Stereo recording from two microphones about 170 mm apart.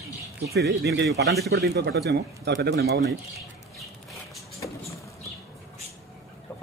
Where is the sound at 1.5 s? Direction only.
75° right (ahead or behind).